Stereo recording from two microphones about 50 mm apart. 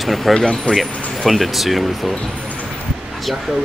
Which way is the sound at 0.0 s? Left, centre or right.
Centre.